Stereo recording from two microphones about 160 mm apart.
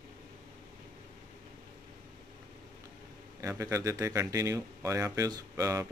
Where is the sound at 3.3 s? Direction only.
20° right (ahead or behind).